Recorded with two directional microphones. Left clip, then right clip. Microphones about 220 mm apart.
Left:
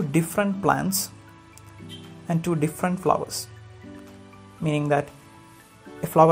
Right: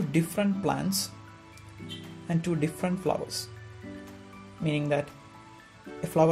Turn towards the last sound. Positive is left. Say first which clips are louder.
# left 7 dB
turn(degrees=15)  # may be behind; listen again after turning